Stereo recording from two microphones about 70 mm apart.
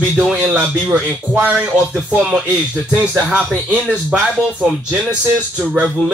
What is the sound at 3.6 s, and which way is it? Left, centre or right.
Speech, centre.